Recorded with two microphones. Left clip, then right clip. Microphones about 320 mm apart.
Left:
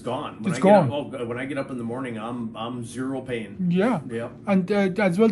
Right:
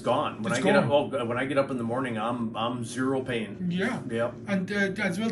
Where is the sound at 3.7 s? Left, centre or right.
Centre.